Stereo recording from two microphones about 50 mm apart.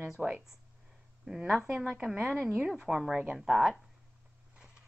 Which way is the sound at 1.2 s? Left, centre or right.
Centre.